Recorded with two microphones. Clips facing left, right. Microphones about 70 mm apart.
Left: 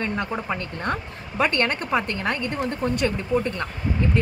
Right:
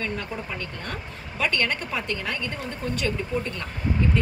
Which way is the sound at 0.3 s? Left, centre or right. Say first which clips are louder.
Left 5 dB; left.